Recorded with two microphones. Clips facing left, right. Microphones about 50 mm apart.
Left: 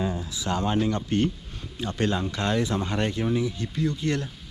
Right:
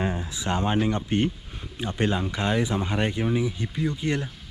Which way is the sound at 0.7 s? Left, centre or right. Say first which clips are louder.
Even; right.